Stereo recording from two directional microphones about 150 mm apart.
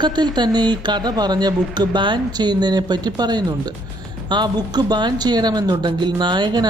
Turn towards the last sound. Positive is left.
turn(degrees=-30)  # may be behind; listen again after turning